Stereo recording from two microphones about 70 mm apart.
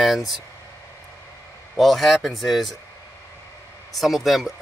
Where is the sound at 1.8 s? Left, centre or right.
Centre.